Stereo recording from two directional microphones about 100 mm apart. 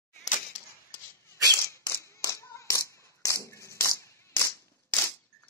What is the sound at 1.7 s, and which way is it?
Clapping, 30° left (ahead or behind).